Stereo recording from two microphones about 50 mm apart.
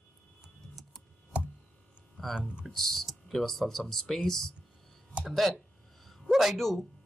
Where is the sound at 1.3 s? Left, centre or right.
Right.